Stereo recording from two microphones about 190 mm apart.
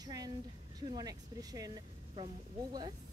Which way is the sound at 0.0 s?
20° right (ahead or behind).